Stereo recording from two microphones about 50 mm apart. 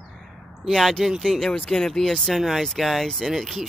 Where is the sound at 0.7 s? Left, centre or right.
Centre.